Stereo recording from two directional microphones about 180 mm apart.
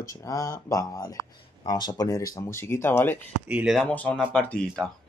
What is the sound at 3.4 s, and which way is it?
Speech, 5° right (ahead or behind).